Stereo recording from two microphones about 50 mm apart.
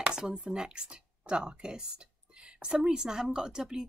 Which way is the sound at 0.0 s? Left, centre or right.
Centre.